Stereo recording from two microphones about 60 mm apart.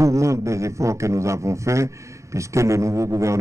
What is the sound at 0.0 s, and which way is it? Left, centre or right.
A man's voice, right.